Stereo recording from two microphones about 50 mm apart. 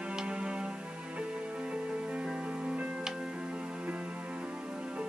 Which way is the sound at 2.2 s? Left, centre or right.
Right.